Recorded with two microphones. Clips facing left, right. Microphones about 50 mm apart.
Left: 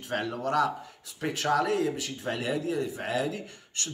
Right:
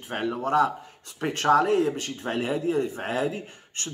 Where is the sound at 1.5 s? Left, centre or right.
Right.